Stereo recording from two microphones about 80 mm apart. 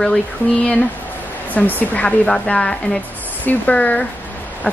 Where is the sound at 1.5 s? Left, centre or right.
Left.